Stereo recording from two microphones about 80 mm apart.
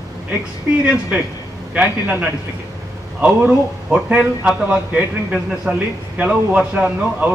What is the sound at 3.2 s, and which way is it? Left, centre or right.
A man's voice, centre.